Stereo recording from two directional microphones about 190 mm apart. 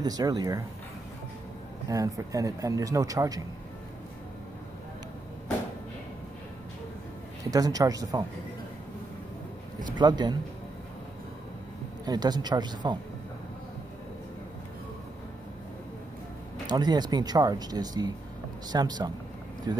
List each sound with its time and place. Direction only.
0.0 s speech: 20° right (ahead or behind)
1.9 s speech: 15° right (ahead or behind)
7.5 s speech: 20° right (ahead or behind)
9.9 s speech: 25° right (ahead or behind)
12.0 s speech: 20° right (ahead or behind)
16.6 s speech: 20° right (ahead or behind)